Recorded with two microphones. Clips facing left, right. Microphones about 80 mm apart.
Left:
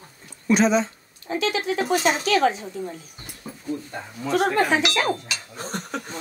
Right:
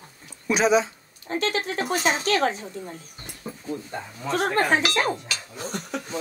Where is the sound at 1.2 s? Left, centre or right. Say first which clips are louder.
Left 2 dB; right.